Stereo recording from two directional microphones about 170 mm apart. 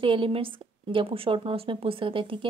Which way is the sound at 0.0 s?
30° right (ahead or behind).